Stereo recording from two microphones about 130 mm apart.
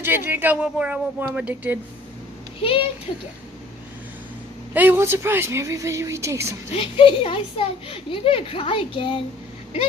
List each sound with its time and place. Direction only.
0.0 s speech: 15° right (ahead or behind)
2.6 s a woman's voice: 45° left (ahead or behind)
4.7 s speech: 15° right (ahead or behind)
6.7 s a woman's voice: 45° left (ahead or behind)